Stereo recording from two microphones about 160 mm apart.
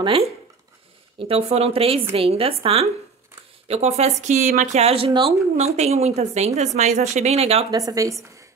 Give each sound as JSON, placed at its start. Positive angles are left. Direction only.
{"t": 1.2, "sound": "a woman's voice", "side_deg": -40}
{"t": 7.7, "sound": "a woman's voice", "side_deg": -20}